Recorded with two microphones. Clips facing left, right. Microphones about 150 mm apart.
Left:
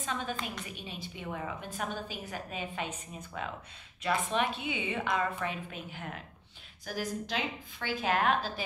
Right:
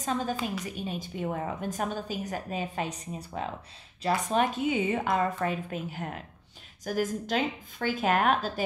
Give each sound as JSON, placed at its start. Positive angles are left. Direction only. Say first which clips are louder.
{"t": 0.0, "sound": "a woman's voice", "louder": "right 6 dB", "side_deg": -40}